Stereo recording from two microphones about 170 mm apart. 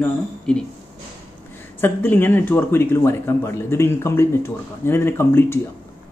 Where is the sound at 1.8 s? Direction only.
10° left (ahead or behind).